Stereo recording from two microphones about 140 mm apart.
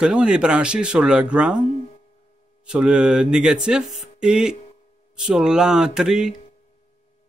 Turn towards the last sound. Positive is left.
turn(degrees=-5)  # may be behind; listen again after turning